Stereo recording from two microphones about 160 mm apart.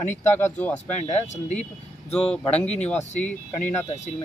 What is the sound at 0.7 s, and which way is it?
Speech, 45° left (ahead or behind).